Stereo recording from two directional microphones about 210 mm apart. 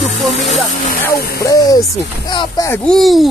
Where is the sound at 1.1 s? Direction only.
45° left (ahead or behind).